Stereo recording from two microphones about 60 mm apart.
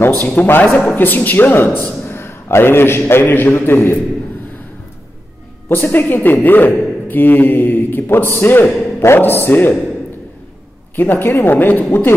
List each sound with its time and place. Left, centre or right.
0.2 s a man's voice: left
5.7 s a man's voice: left
11.0 s a man's voice: left